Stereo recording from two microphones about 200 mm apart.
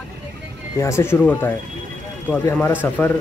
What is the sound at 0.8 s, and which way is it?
Speech, 15° left (ahead or behind).